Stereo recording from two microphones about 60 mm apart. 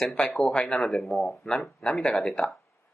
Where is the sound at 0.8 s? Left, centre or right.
Centre.